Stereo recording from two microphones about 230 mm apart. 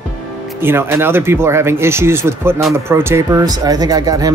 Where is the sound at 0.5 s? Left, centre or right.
Centre.